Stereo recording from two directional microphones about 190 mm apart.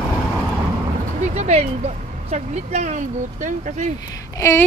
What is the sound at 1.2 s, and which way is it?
Speech, 35° right (ahead or behind).